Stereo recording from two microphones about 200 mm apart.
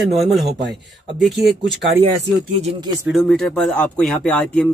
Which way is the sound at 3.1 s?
Centre (ahead or behind).